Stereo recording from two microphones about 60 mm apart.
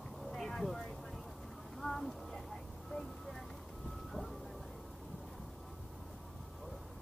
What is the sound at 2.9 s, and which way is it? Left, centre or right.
Vehicle, centre.